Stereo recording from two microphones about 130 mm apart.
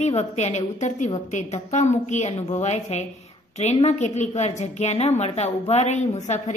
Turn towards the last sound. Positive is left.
turn(degrees=60)  # may be behind; listen again after turning